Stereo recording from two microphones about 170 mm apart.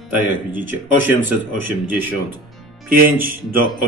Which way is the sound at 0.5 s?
10° right (ahead or behind).